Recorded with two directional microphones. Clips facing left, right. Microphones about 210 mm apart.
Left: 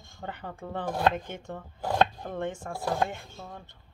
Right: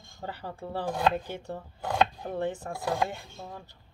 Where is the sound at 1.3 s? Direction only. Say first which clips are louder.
Right 2 dB; 35° right (ahead or behind).